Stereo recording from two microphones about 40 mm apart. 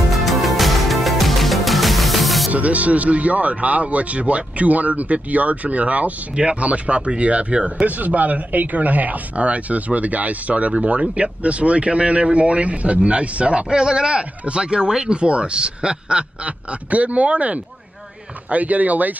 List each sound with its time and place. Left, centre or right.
0.1 s music: centre
2.5 s speech: right
7.8 s speech: right
16.9 s speech: right